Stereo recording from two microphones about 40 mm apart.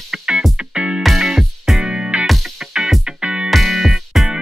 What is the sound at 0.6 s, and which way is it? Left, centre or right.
Music, right.